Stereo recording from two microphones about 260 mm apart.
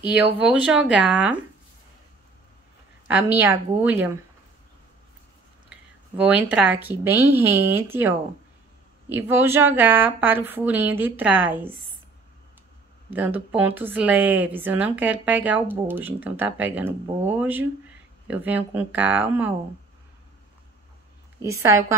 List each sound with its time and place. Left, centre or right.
0.0 s speech: centre
3.3 s a woman's voice: centre
6.1 s a woman's voice: centre
9.1 s a woman's voice: centre
13.1 s a woman's voice: centre
21.4 s a woman's voice: centre